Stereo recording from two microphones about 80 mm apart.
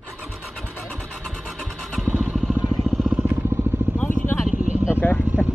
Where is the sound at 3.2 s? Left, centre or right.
Right.